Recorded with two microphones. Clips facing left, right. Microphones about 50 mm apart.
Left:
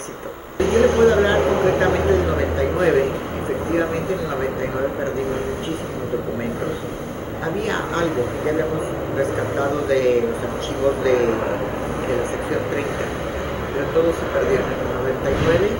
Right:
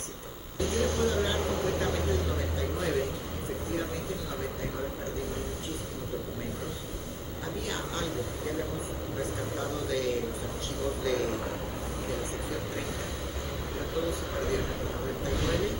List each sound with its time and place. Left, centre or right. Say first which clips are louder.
0.6 s vehicle: left 14 dB; left
3.7 s a sound: left 13 dB; left
7.6 s speech: left 13 dB; left
12.1 s vehicle: left 13 dB; left
13.7 s a man's voice: left 14 dB; left